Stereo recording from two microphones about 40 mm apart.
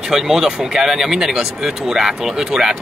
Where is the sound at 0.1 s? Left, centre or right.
Centre.